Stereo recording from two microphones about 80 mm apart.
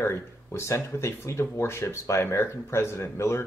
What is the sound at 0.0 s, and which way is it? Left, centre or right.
Speech, left.